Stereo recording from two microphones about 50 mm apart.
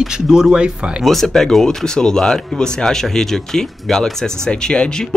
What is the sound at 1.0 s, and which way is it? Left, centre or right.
Speech, centre.